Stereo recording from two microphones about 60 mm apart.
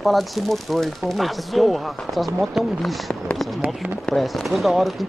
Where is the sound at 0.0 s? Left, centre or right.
Centre.